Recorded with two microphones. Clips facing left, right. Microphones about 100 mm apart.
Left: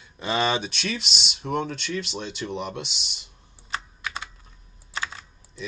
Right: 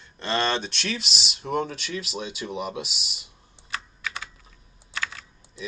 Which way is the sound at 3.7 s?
20° left (ahead or behind).